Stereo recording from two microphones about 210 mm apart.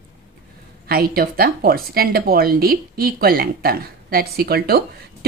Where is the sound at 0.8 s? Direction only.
45° right (ahead or behind).